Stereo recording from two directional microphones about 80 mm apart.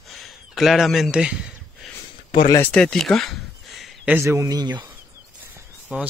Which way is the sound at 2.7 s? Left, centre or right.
Centre.